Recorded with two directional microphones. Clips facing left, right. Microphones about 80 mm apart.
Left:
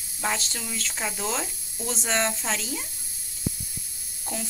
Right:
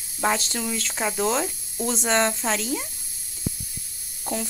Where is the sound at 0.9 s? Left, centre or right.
Centre.